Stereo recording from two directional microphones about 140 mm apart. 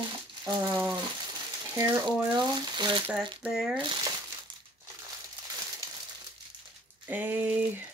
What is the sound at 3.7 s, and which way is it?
Speech, 35° right (ahead or behind).